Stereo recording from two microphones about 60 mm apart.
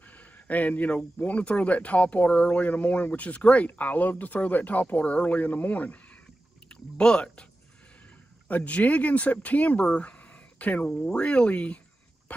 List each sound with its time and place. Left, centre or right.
0.0 s speech: left
6.7 s speech: centre
8.5 s speech: left
9.8 s a sound: left
10.9 s speech: centre
12.3 s a sound: left